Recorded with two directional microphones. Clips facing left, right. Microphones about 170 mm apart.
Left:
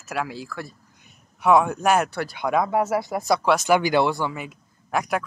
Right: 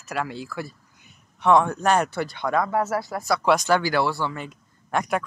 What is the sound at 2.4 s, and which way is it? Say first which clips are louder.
Speech: left 2 dB; 10° left (ahead or behind).